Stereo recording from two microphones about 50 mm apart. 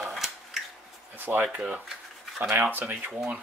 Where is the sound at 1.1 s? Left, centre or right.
Right.